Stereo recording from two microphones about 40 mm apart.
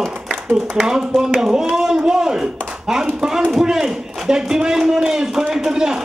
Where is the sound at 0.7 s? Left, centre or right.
Centre.